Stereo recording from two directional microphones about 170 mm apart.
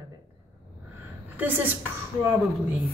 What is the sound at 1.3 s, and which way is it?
Speech, 10° right (ahead or behind).